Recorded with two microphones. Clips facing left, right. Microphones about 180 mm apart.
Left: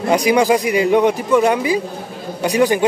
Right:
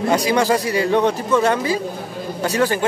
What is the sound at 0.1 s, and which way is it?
A man's voice, 15° left (ahead or behind).